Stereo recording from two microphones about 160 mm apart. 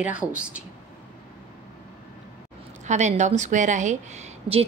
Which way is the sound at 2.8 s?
45° right (ahead or behind).